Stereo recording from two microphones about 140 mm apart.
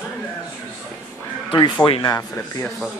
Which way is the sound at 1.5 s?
35° left (ahead or behind).